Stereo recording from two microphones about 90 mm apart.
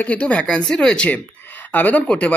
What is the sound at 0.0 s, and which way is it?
Speech, 15° left (ahead or behind).